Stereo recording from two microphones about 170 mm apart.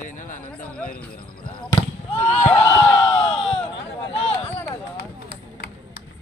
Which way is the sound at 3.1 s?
35° left (ahead or behind).